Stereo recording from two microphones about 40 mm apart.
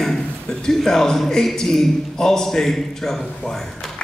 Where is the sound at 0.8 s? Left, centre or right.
Centre.